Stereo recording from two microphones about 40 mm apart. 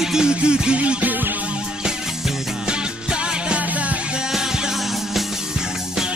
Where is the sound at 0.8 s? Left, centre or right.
Right.